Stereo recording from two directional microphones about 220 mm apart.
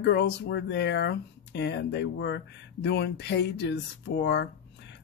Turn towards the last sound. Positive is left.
turn(degrees=50)  # may be behind; listen again after turning